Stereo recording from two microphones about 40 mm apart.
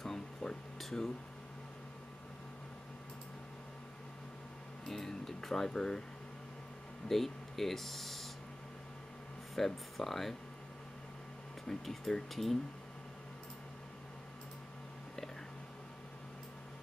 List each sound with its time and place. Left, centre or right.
0.0 s a sound: centre
0.7 s speech: centre
4.8 s speech: centre
7.1 s speech: centre
9.6 s speech: centre
11.6 s speech: centre